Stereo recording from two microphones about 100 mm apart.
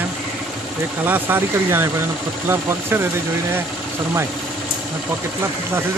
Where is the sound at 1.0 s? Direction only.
20° right (ahead or behind).